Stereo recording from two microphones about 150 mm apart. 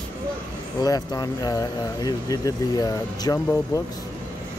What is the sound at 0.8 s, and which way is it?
Speech, 25° left (ahead or behind).